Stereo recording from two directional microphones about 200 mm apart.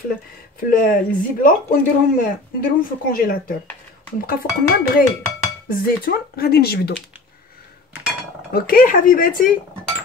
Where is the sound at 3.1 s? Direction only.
45° left (ahead or behind).